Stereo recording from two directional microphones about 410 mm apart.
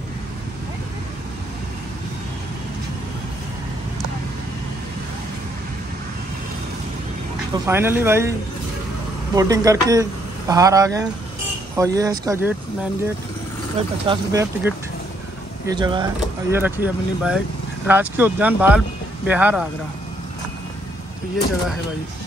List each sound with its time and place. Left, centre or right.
7.5 s speech: centre
14.0 s speech: centre